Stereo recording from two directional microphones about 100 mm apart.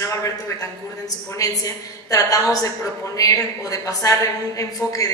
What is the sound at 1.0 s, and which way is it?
A woman's voice, 35° left (ahead or behind).